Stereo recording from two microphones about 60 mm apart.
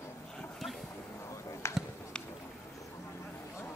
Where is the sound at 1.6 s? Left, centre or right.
Left.